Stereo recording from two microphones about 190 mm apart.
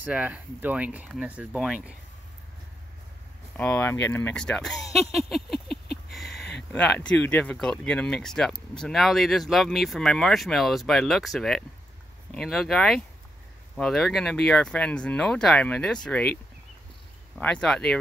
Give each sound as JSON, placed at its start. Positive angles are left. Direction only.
{"t": 0.0, "sound": "speech", "side_deg": -10}
{"t": 3.5, "sound": "speech", "side_deg": 10}
{"t": 5.7, "sound": "a sound", "side_deg": 55}
{"t": 6.7, "sound": "speech", "side_deg": 5}
{"t": 17.4, "sound": "speech", "side_deg": 5}